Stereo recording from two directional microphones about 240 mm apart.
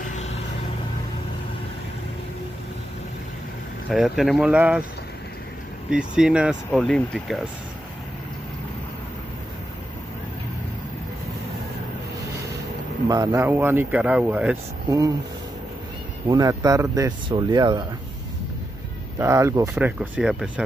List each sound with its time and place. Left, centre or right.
0.0 s vehicle: left
3.9 s speech: centre
5.9 s speech: centre
13.1 s speech: centre
16.3 s speech: centre
19.1 s speech: centre